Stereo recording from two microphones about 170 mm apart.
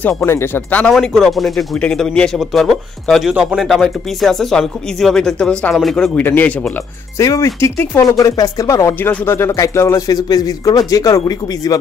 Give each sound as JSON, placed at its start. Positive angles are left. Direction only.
{"t": 0.0, "sound": "speech", "side_deg": 10}